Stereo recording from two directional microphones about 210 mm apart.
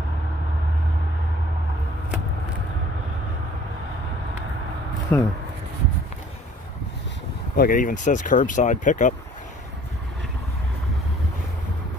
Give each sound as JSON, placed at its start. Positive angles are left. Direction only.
{"t": 5.1, "sound": "speech", "side_deg": 10}
{"t": 7.5, "sound": "speech", "side_deg": 40}